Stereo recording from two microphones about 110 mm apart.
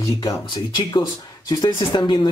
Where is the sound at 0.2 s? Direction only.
40° left (ahead or behind).